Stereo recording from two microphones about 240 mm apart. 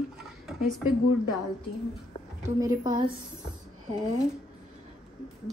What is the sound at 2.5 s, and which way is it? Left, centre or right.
Speech, centre.